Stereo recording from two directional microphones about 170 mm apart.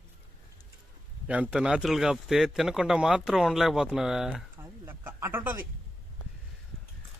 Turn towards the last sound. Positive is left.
turn(degrees=-10)  # may be behind; listen again after turning